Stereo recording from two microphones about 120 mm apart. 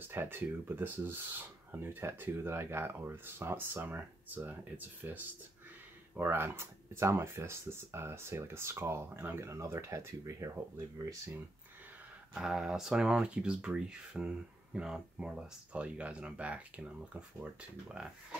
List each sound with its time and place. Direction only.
0.1 s speech: 15° right (ahead or behind)
12.4 s speech: 5° right (ahead or behind)